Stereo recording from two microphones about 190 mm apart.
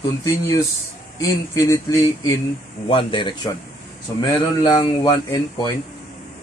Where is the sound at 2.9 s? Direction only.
25° left (ahead or behind).